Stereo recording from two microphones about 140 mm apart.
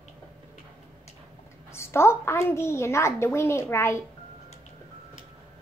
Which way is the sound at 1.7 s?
20° left (ahead or behind).